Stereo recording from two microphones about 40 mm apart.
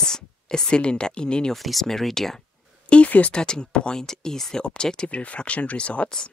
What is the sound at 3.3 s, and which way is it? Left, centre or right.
Speech, left.